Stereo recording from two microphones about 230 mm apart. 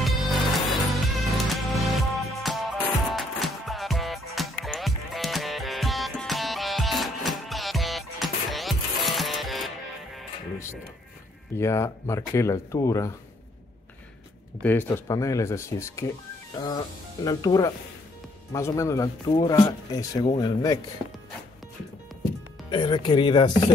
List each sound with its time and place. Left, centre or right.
0.0 s music: centre
11.5 s speech: centre
14.6 s speech: centre
22.7 s speech: centre